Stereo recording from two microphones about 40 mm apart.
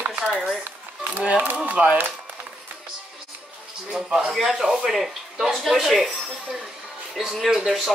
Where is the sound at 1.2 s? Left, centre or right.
Right.